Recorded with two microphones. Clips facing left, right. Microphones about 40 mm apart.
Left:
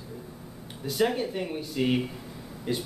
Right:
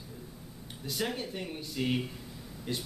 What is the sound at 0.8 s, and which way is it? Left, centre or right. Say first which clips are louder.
A man's voice: left 8 dB; centre.